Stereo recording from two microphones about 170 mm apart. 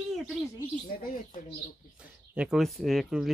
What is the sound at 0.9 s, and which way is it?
Speech, 55° left (ahead or behind).